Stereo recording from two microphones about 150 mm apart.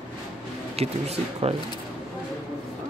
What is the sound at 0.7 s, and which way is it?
Speech, 45° right (ahead or behind).